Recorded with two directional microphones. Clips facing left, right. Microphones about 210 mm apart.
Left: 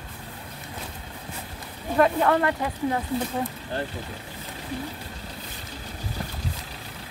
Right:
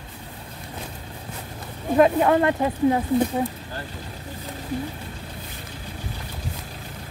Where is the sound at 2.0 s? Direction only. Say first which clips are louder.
Right 3 dB; 20° right (ahead or behind).